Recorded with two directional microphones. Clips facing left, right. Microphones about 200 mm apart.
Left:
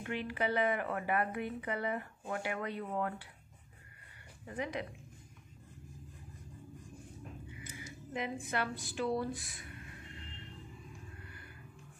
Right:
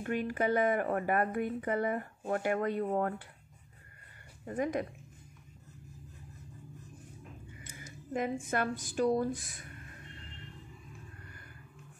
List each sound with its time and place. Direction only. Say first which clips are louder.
0.0 s speech: right 5 dB; 45° right (ahead or behind)
4.5 s speech: right 6 dB; 45° right (ahead or behind)
8.1 s speech: right 5 dB; 45° right (ahead or behind)